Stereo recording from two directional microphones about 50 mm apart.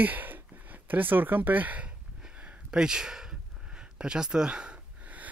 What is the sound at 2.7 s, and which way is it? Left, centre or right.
Speech, centre.